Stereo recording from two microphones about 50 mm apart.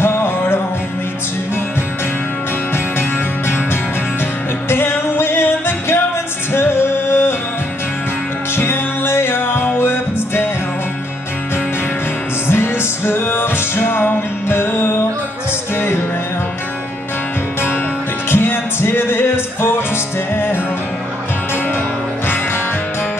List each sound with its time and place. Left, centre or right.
0.0 s music: left
2.7 s music: left
4.6 s music: left
8.5 s music: left
12.4 s music: left
18.3 s music: left